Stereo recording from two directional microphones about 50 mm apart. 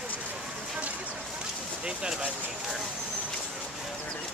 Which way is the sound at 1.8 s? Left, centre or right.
Centre.